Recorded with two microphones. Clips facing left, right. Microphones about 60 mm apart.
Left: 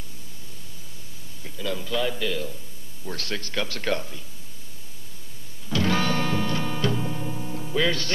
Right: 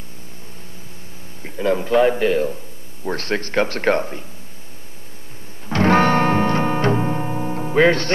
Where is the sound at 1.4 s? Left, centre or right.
Right.